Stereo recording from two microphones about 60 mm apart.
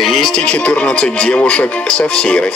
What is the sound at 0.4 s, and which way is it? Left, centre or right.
Speech, left.